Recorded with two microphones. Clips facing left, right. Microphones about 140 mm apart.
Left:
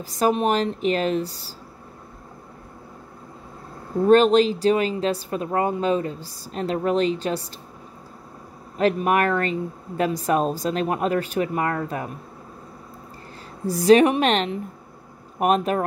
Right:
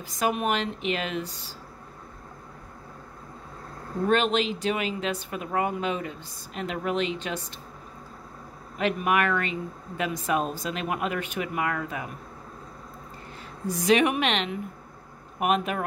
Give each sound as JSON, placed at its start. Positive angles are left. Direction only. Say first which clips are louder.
{"t": 0.0, "sound": "speech", "louder": "left 6 dB", "side_deg": 35}
{"t": 4.1, "sound": "speech", "louder": "left 9 dB", "side_deg": 40}
{"t": 8.7, "sound": "speech", "louder": "left 5 dB", "side_deg": 35}
{"t": 13.7, "sound": "speech", "louder": "left 7 dB", "side_deg": 35}